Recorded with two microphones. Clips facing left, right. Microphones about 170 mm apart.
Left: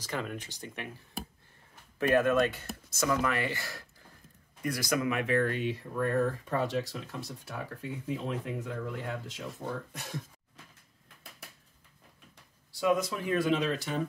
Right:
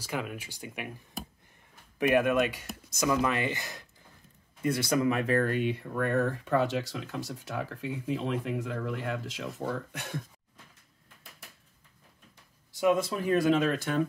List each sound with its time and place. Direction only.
0.0 s speech: 10° right (ahead or behind)
2.0 s speech: 15° right (ahead or behind); by 9.4 s 90° right
9.9 s speech: 60° right (ahead or behind)
12.7 s speech: 20° right (ahead or behind)
13.3 s speech: 45° right (ahead or behind)